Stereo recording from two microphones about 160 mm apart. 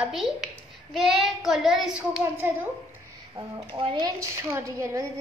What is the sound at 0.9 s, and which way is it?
Child singing, centre (ahead or behind).